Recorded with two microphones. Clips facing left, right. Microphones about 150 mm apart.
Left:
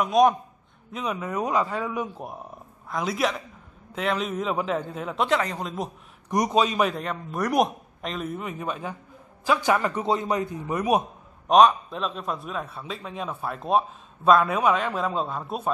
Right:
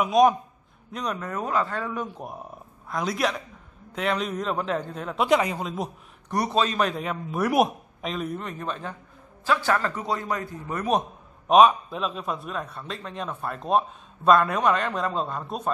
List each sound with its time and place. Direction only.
0.0 s a man's voice: centre (ahead or behind)
5.3 s a man's voice: 10° right (ahead or behind)
5.6 s a man's voice: centre (ahead or behind)
6.3 s a man's voice: 15° left (ahead or behind)
6.9 s a man's voice: centre (ahead or behind)
11.4 s a man's voice: 5° right (ahead or behind)